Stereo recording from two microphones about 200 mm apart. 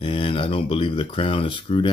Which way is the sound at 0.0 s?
25° left (ahead or behind).